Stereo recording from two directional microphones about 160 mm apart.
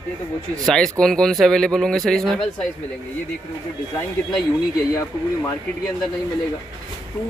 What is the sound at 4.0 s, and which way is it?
Speech, 5° left (ahead or behind).